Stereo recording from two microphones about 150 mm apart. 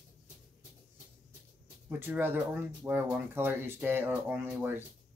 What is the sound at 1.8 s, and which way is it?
Speech, 15° right (ahead or behind).